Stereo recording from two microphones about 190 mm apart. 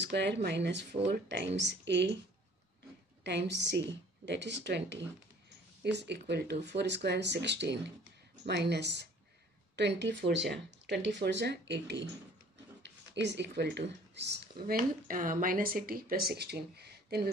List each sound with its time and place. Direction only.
0.0 s speech: 65° right (ahead or behind)
3.3 s speech: 65° right (ahead or behind)
14.8 s speech: 45° right (ahead or behind)